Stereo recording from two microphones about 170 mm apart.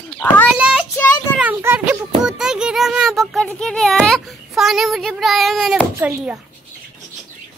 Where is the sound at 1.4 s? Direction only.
15° right (ahead or behind).